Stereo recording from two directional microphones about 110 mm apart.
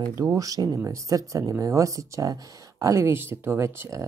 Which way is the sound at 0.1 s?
30° right (ahead or behind).